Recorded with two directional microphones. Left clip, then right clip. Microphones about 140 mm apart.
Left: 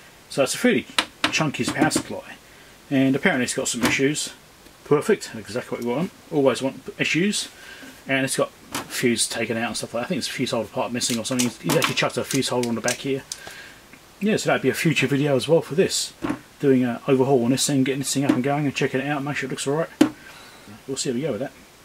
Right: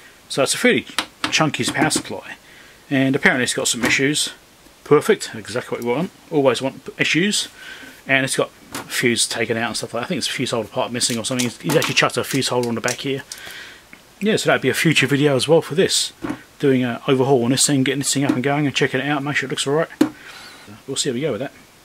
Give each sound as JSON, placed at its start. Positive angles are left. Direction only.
{"t": 0.4, "sound": "speech", "side_deg": -35}
{"t": 14.2, "sound": "speech", "side_deg": -35}
{"t": 20.9, "sound": "speech", "side_deg": -35}